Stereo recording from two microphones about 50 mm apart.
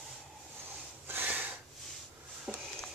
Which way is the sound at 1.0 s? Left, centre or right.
Right.